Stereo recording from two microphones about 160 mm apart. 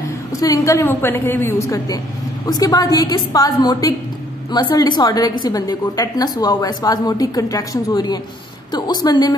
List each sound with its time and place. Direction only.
0.3 s a woman's voice: 20° left (ahead or behind)